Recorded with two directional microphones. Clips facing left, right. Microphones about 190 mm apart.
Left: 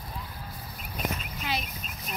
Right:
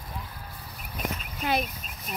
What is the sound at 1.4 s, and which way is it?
Speech, 50° right (ahead or behind).